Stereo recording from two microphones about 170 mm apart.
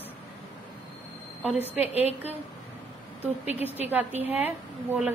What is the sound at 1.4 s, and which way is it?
Speech, 10° right (ahead or behind).